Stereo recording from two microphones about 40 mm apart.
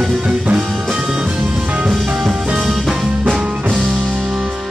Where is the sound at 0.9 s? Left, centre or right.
Centre.